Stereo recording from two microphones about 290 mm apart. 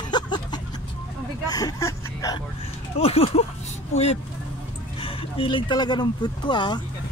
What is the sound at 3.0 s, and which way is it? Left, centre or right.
Speech, left.